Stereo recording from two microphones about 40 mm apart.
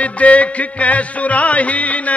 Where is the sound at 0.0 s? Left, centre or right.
Left.